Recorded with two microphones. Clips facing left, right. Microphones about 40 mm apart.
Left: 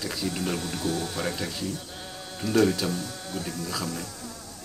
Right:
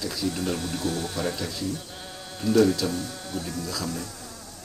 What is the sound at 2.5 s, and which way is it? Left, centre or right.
Speech, left.